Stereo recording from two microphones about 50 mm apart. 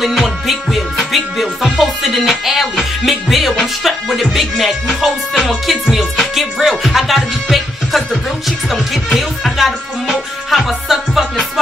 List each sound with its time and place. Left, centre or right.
0.0 s music: centre